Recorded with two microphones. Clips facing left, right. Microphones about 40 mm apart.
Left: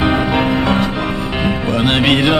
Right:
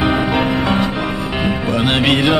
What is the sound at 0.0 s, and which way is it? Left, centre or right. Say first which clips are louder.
Music: left 1 dB; centre.